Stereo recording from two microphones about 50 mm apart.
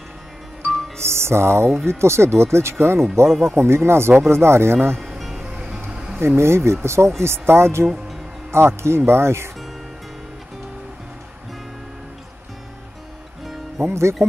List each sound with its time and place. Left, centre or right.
0.6 s music: right
1.9 s speech: right
3.3 s speech: centre
3.5 s speech: right
5.0 s music: centre
5.5 s music: centre
6.1 s speech: right
7.8 s speech: centre
8.5 s speech: right
13.7 s speech: right